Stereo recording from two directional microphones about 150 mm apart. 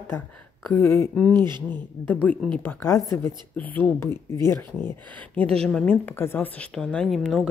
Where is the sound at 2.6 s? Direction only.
15° left (ahead or behind).